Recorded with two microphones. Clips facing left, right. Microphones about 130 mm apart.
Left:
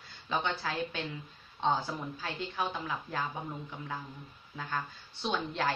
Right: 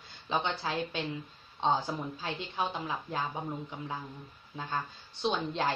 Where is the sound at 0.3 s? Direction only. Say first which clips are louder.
Right 1 dB; 20° right (ahead or behind).